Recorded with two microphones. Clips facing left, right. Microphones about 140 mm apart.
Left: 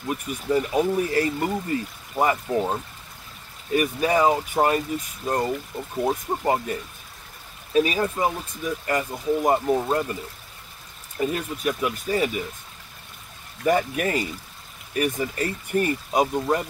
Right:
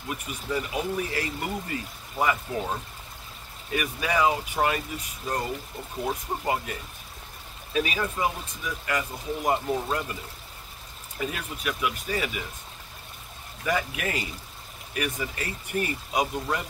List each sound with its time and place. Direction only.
0.1 s speech: 40° left (ahead or behind)
3.7 s speech: 40° left (ahead or behind)
11.1 s speech: 40° left (ahead or behind)
13.7 s speech: 40° left (ahead or behind)